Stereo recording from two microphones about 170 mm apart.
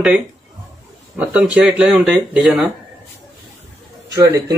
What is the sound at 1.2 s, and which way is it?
Speech, 5° right (ahead or behind).